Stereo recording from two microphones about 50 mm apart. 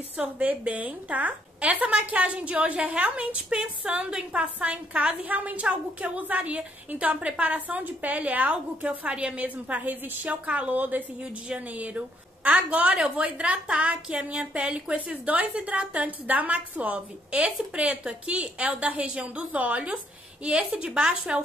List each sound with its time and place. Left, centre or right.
0.2 s a woman's voice: right